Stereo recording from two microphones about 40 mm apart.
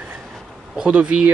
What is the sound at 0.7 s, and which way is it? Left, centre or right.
Speech, right.